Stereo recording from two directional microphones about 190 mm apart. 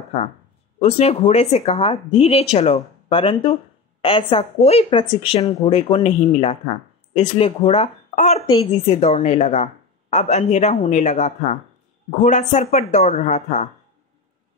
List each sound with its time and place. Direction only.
0.7 s a woman's voice: 35° left (ahead or behind)